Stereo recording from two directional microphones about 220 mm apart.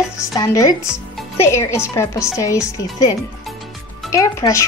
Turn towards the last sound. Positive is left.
turn(degrees=15)  # may be behind; listen again after turning